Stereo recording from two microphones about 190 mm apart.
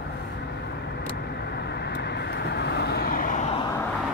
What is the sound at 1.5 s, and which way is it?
Vehicle, 60° left (ahead or behind).